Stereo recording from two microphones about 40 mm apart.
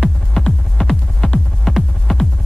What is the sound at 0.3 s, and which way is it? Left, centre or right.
Music, centre.